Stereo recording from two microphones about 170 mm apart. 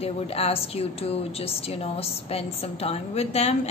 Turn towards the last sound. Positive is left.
turn(degrees=40)  # may be behind; listen again after turning